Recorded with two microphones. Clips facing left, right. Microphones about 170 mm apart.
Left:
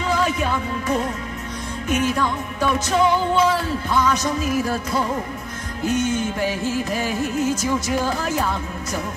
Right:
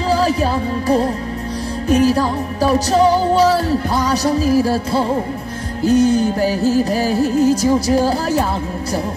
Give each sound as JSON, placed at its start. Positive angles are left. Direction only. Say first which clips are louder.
{"t": 0.1, "sound": "music", "louder": "right 6 dB", "side_deg": -35}